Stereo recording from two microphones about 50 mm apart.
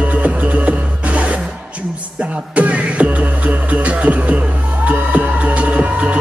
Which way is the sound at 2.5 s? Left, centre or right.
Right.